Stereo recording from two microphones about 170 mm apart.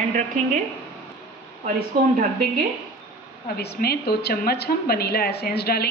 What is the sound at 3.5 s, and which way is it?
A woman's voice, 70° left (ahead or behind).